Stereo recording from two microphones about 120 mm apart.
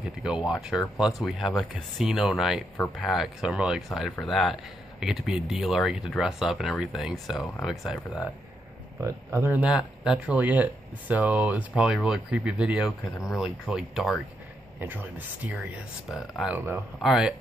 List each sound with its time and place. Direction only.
0.0 s speech: 5° right (ahead or behind)
9.0 s speech: 20° right (ahead or behind); by 14.2 s 5° right (ahead or behind)
14.8 s speech: 15° right (ahead or behind)
16.5 s speech: 15° right (ahead or behind)
17.0 s speech: 5° right (ahead or behind)